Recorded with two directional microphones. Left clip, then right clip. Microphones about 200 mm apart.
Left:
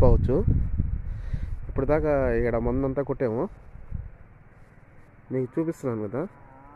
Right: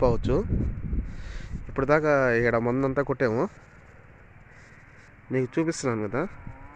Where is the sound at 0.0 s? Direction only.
25° left (ahead or behind).